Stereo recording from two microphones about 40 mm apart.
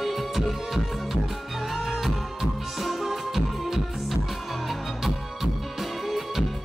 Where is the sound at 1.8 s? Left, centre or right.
Centre.